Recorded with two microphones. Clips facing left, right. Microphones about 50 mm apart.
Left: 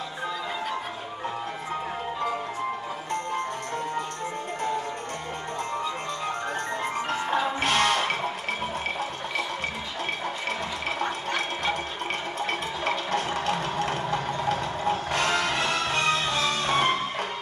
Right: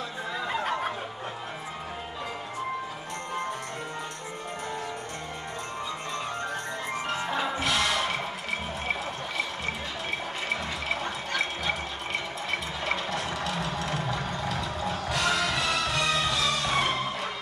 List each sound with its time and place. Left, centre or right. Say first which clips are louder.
7.1 s music: left 2 dB; left
11.0 s a sound: left 2 dB; left
12.4 s music: left 3 dB; left